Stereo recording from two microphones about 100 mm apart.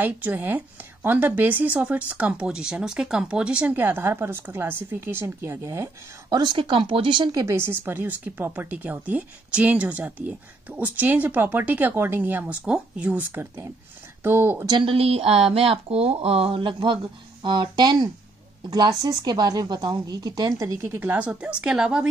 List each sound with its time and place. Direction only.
0.0 s a woman's voice: 20° right (ahead or behind)
6.3 s speech: 50° right (ahead or behind)
7.4 s a woman's voice: 25° right (ahead or behind)
14.8 s speech: 70° right (ahead or behind); by 22.0 s 10° right (ahead or behind)